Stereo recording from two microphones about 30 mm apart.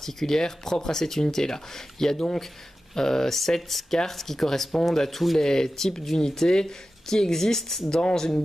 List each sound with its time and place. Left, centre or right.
0.0 s speech: centre